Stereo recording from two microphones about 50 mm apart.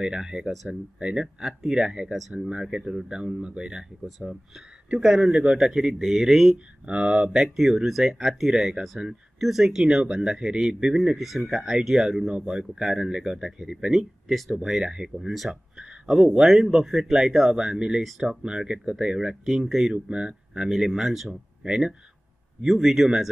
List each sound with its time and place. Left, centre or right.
0.0 s speech: centre
6.9 s speech: centre
7.3 s speech: centre
19.4 s speech: centre
19.9 s speech: centre
20.6 s speech: centre